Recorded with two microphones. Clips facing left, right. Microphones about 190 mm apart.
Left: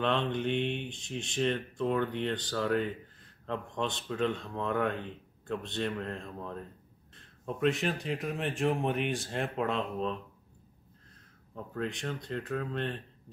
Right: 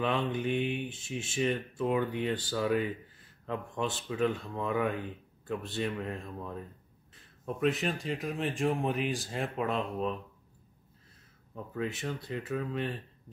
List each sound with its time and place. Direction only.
0.0 s speech: 5° right (ahead or behind)
11.5 s speech: 5° right (ahead or behind)